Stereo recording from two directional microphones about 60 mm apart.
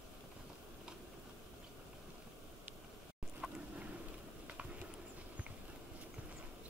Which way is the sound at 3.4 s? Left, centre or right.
Centre.